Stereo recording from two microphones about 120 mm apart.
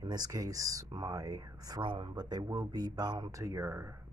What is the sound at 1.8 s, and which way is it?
Speech, 45° right (ahead or behind).